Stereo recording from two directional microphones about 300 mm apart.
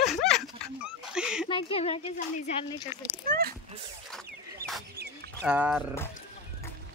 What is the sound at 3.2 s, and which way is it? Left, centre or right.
Speech, right.